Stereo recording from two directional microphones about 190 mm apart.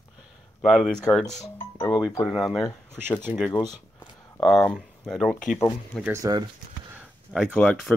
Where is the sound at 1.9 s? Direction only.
15° left (ahead or behind).